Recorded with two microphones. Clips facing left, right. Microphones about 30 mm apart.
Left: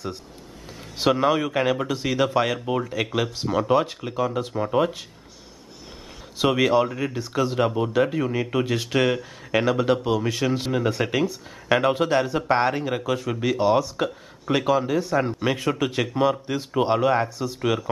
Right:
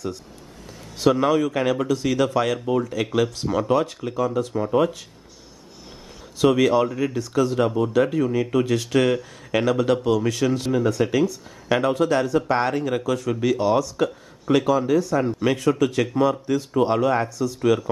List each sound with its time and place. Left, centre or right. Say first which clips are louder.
0.9 s a man's voice: right 2 dB; left
6.3 s a man's voice: right 2 dB; centre